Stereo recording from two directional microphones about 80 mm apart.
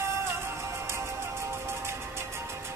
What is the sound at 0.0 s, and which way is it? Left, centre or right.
Music, right.